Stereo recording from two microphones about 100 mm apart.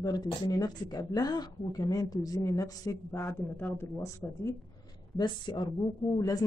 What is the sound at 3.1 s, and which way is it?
Speech, 25° left (ahead or behind).